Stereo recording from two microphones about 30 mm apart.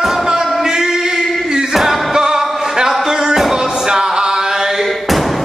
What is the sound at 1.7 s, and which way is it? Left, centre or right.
Music, centre.